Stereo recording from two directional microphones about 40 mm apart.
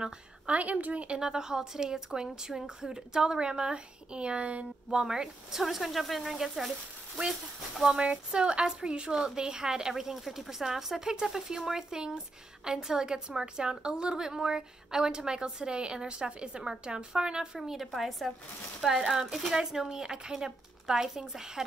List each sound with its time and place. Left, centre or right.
0.5 s a woman's voice: right
1.0 s a woman's voice: right
4.9 s a woman's voice: centre
5.6 s a woman's voice: centre
8.0 s a woman's voice: right
17.6 s a woman's voice: centre